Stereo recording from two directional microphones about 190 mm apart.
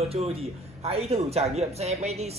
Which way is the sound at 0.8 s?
30° right (ahead or behind).